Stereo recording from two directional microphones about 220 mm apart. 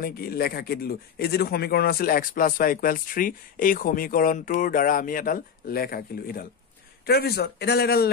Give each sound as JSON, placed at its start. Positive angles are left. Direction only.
{"t": 0.0, "sound": "a man's voice", "side_deg": 45}